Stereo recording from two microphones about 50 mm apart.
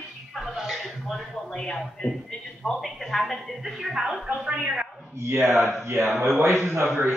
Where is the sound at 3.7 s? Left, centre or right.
Centre.